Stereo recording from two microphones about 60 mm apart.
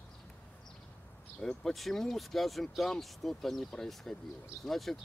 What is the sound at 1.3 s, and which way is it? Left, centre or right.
Speech, centre.